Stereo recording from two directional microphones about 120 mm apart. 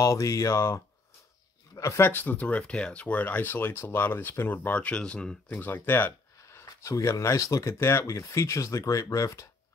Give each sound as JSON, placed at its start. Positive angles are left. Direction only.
{"t": 0.0, "sound": "speech", "side_deg": 25}